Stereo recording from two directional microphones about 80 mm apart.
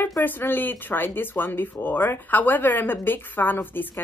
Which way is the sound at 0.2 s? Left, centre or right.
Left.